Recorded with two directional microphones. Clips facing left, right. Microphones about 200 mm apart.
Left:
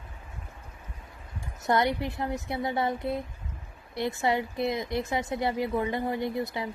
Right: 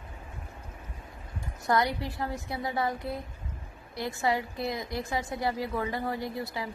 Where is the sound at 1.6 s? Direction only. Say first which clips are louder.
Left 2 dB; 25° left (ahead or behind).